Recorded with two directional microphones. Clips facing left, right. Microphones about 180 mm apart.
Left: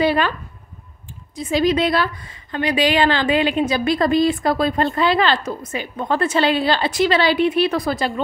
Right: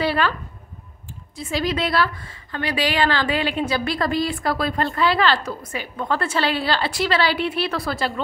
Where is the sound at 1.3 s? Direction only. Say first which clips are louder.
Left 6 dB; 20° left (ahead or behind).